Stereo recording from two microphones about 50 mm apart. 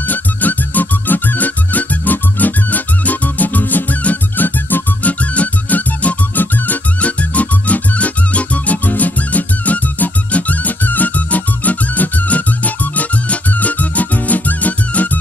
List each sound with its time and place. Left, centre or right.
0.0 s music: left
5.2 s music: left